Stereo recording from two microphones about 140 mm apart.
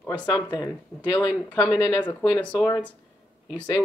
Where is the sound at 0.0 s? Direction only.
10° left (ahead or behind).